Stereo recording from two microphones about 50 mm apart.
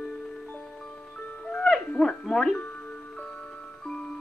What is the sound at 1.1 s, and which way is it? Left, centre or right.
Music, centre.